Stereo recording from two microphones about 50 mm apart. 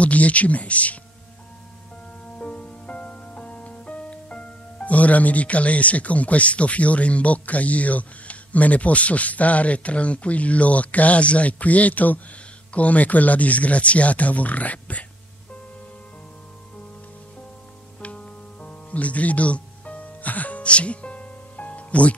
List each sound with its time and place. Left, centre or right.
0.0 s speech: left
2.3 s music: left
12.7 s speech: left
18.0 s music: left